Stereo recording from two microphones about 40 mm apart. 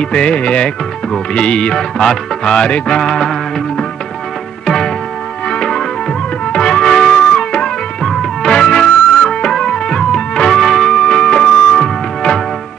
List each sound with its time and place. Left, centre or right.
0.0 s music: left
1.8 s music: centre
2.5 s music: left
3.0 s music: centre
4.6 s music: centre
5.5 s music: left
8.0 s music: centre
8.4 s music: left
10.5 s music: centre
10.9 s music: centre